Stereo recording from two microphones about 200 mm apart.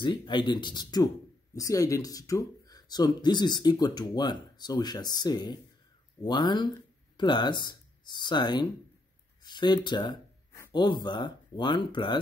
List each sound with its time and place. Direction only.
0.0 s speech: 25° left (ahead or behind)